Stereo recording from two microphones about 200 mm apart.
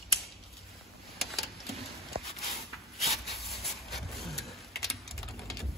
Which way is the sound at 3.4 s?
Centre (ahead or behind).